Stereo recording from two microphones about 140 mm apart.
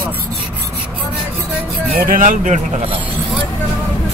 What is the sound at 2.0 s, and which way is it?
Speech, 75° right (ahead or behind).